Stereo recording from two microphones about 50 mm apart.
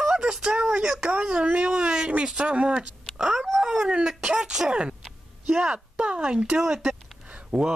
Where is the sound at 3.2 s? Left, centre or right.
Centre.